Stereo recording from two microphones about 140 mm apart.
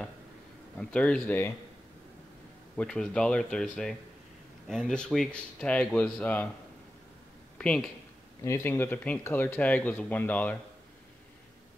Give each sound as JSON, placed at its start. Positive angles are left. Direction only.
{"t": 0.7, "sound": "speech", "side_deg": 5}
{"t": 2.8, "sound": "speech", "side_deg": 5}
{"t": 7.5, "sound": "a sound", "side_deg": 10}
{"t": 8.5, "sound": "speech", "side_deg": 15}